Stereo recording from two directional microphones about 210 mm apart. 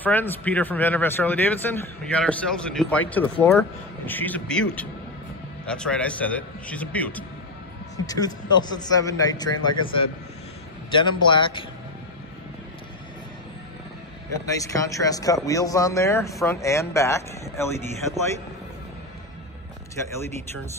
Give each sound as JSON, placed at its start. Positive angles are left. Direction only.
{"t": 0.0, "sound": "speech", "side_deg": 10}
{"t": 8.5, "sound": "a man's voice", "side_deg": 20}
{"t": 14.4, "sound": "speech", "side_deg": 15}